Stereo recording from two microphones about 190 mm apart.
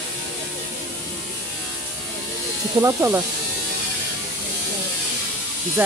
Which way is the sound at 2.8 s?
15° right (ahead or behind).